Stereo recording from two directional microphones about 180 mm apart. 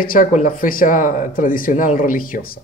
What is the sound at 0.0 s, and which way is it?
Speech, 50° left (ahead or behind).